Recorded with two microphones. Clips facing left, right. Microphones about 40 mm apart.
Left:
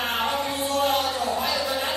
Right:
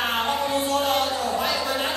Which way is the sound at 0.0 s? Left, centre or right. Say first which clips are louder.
Right 1 dB; right.